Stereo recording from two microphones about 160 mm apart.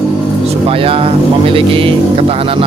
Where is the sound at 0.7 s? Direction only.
35° right (ahead or behind).